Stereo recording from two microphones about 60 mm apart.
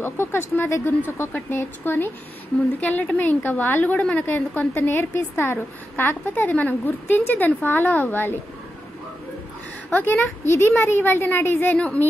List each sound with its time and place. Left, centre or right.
0.0 s a woman's voice: left
4.3 s a woman's voice: left
9.8 s a woman's voice: left
10.4 s a woman's voice: left